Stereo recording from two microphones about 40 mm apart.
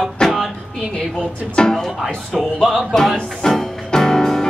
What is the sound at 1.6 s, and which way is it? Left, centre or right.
Speech, centre.